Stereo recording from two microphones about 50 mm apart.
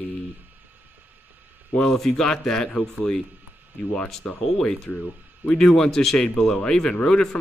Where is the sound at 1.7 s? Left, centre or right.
Centre.